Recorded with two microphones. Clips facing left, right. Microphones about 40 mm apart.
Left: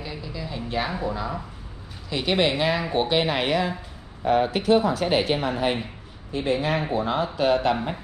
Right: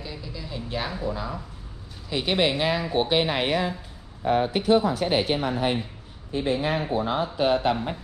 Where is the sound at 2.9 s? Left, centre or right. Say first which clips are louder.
Left 1 dB; centre.